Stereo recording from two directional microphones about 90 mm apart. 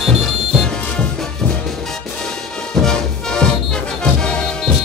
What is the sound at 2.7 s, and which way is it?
Music, 5° left (ahead or behind).